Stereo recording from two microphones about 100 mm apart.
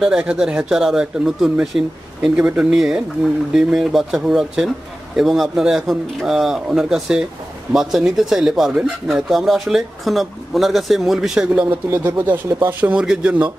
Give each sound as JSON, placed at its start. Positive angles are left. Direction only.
{"t": 0.0, "sound": "speech", "side_deg": -10}
{"t": 11.7, "sound": "speech", "side_deg": -20}